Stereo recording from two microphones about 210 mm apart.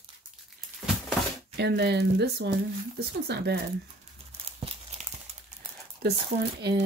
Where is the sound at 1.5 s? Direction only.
50° right (ahead or behind).